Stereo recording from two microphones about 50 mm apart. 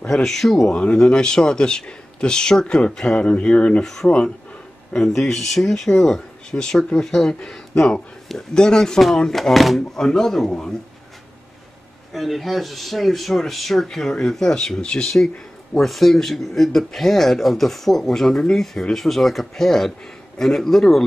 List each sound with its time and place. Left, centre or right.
0.1 s speech: centre
0.9 s speech: centre
3.8 s speech: centre
12.1 s speech: centre
15.7 s speech: centre